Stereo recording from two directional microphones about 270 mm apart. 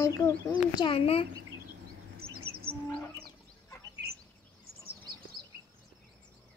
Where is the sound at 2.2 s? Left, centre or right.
Right.